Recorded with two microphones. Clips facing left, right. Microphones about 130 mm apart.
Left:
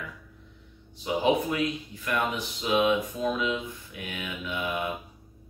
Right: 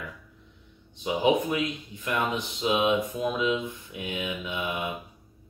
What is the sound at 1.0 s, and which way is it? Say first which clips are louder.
Speech: right 1 dB; 20° right (ahead or behind).